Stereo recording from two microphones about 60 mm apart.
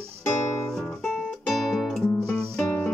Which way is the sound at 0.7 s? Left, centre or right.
Centre.